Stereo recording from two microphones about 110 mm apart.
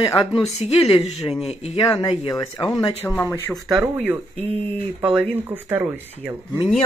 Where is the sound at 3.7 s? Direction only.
15° right (ahead or behind).